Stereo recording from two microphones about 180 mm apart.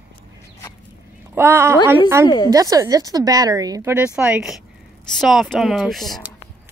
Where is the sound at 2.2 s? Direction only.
20° left (ahead or behind).